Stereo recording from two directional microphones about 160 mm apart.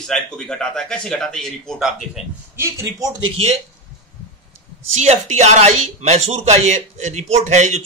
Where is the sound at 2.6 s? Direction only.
20° right (ahead or behind).